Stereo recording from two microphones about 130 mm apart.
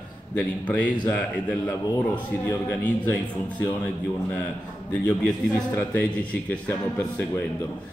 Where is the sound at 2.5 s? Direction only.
15° left (ahead or behind).